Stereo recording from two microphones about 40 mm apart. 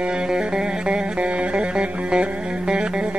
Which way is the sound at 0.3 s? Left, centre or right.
Right.